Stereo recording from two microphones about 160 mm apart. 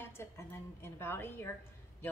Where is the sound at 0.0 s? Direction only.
15° left (ahead or behind).